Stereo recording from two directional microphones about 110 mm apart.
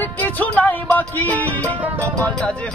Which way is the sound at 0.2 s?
15° left (ahead or behind).